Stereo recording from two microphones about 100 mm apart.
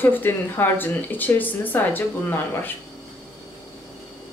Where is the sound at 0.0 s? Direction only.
20° left (ahead or behind).